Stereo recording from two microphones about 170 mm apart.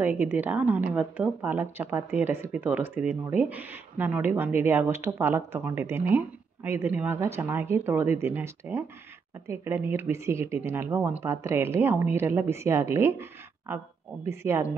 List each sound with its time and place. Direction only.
0.0 s speech: 10° right (ahead or behind)